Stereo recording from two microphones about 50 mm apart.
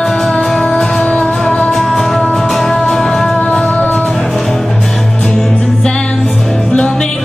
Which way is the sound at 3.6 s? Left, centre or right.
Left.